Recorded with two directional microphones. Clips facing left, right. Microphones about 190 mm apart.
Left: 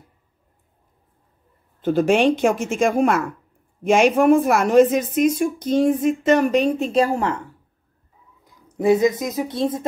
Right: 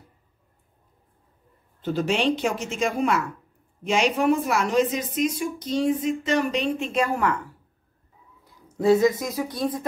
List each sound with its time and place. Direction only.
1.8 s a woman's voice: 50° left (ahead or behind); by 7.4 s 30° left (ahead or behind)
8.7 s speech: 20° left (ahead or behind)